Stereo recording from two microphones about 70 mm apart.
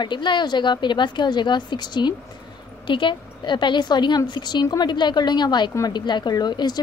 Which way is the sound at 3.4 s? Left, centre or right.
Left.